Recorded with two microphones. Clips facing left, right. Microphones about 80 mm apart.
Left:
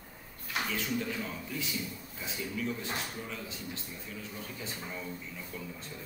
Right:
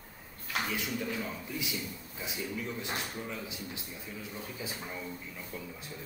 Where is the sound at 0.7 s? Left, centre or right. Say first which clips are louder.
Left 1 dB; centre.